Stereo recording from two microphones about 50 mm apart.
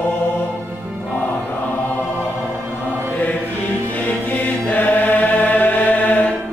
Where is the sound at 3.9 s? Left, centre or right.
Left.